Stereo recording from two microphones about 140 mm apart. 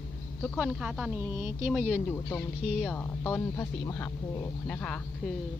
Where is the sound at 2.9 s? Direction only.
15° left (ahead or behind).